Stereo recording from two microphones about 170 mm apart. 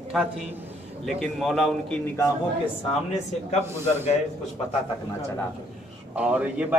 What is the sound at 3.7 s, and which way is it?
Speech, 15° right (ahead or behind).